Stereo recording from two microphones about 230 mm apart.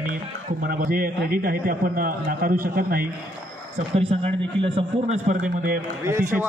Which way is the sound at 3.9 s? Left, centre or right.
Right.